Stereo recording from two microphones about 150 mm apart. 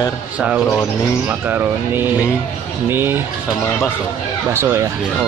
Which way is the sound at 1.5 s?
15° right (ahead or behind).